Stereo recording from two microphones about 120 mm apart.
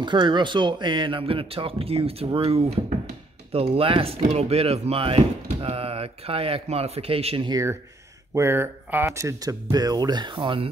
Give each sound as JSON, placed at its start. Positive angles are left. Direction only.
{"t": 0.0, "sound": "speech", "side_deg": -40}
{"t": 4.2, "sound": "speech", "side_deg": -60}
{"t": 8.4, "sound": "speech", "side_deg": -20}